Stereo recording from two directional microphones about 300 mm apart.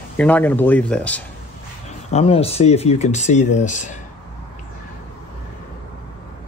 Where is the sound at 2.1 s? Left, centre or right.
Centre.